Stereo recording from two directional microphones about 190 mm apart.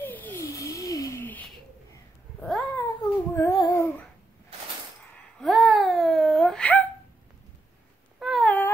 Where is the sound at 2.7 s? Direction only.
15° left (ahead or behind).